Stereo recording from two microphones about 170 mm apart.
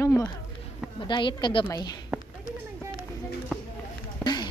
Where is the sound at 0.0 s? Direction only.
15° left (ahead or behind).